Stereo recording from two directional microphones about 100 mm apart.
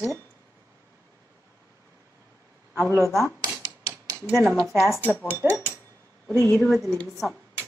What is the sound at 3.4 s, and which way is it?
Typewriter, 40° right (ahead or behind).